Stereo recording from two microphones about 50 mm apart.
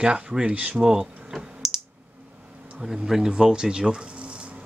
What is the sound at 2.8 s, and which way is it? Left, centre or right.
Speech, centre.